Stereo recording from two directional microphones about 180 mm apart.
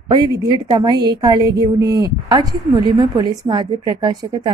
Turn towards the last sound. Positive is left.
turn(degrees=-25)  # may be behind; listen again after turning